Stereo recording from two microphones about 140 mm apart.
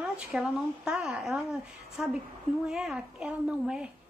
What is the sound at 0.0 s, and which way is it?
A woman's voice, centre (ahead or behind).